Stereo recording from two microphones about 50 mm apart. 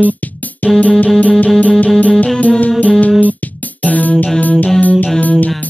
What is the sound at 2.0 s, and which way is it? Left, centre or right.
Music, left.